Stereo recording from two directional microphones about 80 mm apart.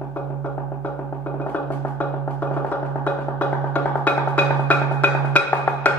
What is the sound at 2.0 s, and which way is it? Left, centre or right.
Music, left.